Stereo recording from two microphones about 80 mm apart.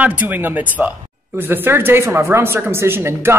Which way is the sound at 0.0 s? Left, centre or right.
Right.